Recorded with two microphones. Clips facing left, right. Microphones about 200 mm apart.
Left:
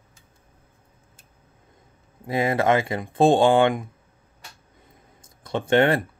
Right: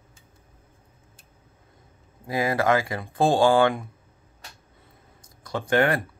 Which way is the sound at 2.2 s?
25° left (ahead or behind).